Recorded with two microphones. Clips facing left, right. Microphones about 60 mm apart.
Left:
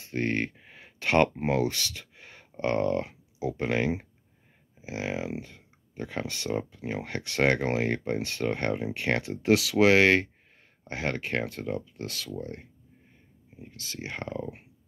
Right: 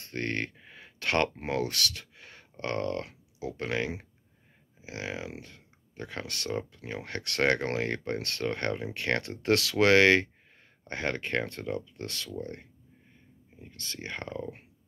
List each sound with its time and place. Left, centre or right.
0.0 s speech: centre